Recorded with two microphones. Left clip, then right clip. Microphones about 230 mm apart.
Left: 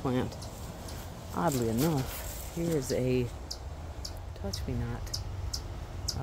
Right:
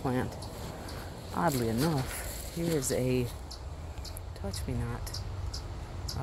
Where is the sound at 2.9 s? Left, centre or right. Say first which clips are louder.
Left 2 dB; centre.